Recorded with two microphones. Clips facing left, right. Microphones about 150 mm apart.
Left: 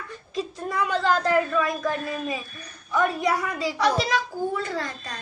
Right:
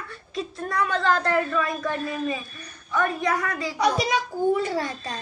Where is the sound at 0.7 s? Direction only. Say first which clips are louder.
Even; 10° left (ahead or behind).